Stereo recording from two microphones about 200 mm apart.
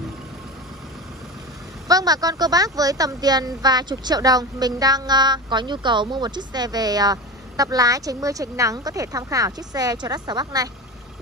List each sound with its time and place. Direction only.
1.9 s speech: 20° right (ahead or behind)